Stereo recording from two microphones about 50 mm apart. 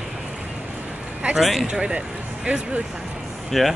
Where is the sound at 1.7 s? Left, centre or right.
Centre.